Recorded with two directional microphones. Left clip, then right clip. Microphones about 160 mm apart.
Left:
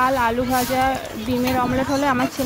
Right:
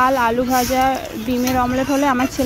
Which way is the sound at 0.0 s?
15° right (ahead or behind).